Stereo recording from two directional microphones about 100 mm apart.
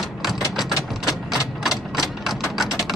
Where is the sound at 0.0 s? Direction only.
Centre (ahead or behind).